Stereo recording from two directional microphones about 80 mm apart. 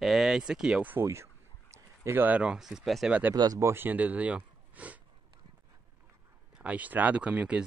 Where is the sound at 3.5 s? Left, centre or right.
Right.